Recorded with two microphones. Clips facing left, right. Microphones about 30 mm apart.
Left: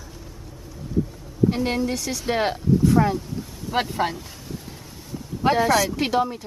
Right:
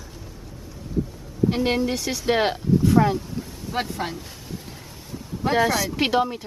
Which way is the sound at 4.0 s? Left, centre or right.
Centre.